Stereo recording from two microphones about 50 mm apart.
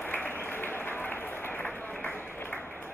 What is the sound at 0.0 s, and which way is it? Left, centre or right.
Applause, left.